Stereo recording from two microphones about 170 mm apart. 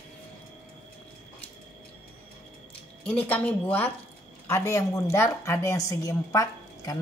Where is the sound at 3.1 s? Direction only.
10° left (ahead or behind).